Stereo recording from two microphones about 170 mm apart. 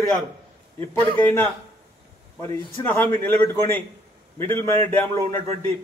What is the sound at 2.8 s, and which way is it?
A man's voice, 10° left (ahead or behind).